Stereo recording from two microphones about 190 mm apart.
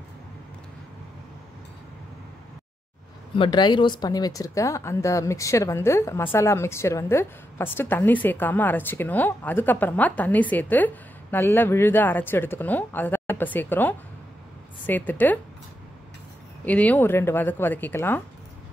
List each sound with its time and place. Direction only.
3.3 s a woman's voice: 25° left (ahead or behind); by 15.3 s 10° left (ahead or behind)
16.6 s a woman's voice: 5° left (ahead or behind)